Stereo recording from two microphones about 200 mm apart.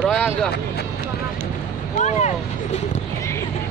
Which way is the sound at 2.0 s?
35° left (ahead or behind).